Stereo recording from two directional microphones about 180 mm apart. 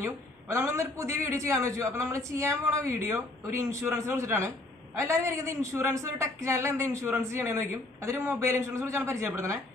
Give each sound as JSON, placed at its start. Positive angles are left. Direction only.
{"t": 0.0, "sound": "speech", "side_deg": -15}